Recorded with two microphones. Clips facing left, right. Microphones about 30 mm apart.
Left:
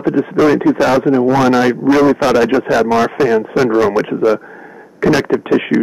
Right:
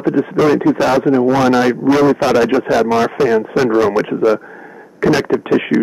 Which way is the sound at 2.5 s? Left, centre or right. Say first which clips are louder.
Left 1 dB; centre.